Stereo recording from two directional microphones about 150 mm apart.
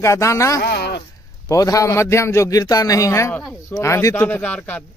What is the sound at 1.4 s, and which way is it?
A man's voice, 25° left (ahead or behind).